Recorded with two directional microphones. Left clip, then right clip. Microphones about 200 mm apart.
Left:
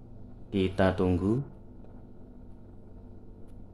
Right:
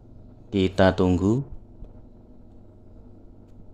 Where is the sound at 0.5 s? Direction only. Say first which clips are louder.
Right 7 dB; 20° right (ahead or behind).